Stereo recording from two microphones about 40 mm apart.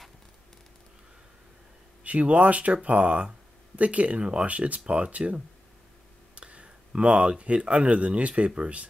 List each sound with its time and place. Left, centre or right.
2.0 s speech: right
6.3 s a sound: right
6.9 s speech: right